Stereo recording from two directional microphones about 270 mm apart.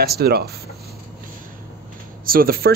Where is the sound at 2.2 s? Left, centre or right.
Right.